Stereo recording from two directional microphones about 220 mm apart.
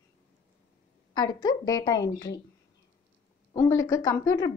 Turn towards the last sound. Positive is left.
turn(degrees=15)  # may be behind; listen again after turning